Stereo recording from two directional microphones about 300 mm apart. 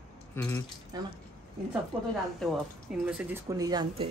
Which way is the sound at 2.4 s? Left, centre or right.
Centre.